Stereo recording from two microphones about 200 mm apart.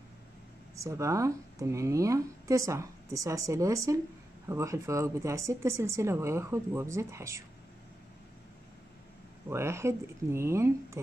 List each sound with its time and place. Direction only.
0.7 s a woman's voice: 15° right (ahead or behind)
9.5 s a woman's voice: 15° right (ahead or behind)